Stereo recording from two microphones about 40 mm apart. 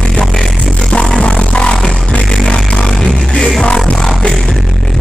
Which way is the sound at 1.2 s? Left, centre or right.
Left.